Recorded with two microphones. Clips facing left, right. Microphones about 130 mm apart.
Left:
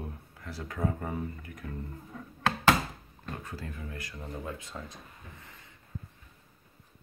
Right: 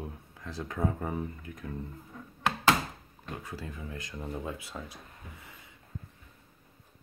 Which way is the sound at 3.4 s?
15° right (ahead or behind).